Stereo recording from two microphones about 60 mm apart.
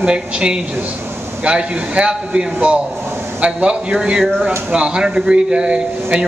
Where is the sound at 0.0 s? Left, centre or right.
Centre.